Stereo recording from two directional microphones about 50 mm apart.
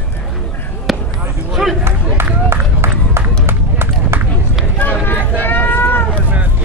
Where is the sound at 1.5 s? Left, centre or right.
Centre.